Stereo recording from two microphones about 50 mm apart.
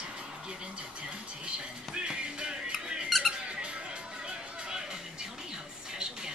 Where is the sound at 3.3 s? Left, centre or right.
Centre.